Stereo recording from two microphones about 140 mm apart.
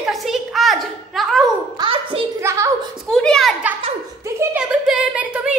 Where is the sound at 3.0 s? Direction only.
5° left (ahead or behind).